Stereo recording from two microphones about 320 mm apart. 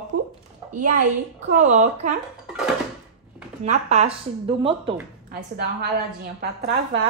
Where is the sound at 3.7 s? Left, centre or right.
Right.